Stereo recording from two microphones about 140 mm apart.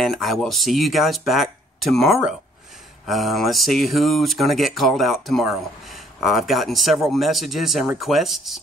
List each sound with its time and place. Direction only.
0.0 s speech: centre (ahead or behind)